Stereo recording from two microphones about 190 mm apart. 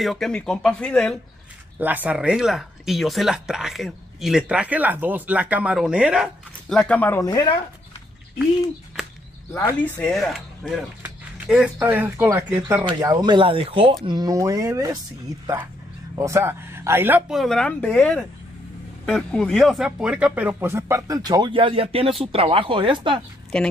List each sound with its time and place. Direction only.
0.0 s speech: centre (ahead or behind)
1.8 s speech: 10° right (ahead or behind); by 7.2 s 10° left (ahead or behind)
7.2 s speech: 25° left (ahead or behind)
9.9 s speech: 5° left (ahead or behind); by 12.8 s 10° right (ahead or behind)
12.8 s speech: 20° right (ahead or behind)
16.2 s speech: 15° right (ahead or behind)
23.5 s speech: 5° left (ahead or behind)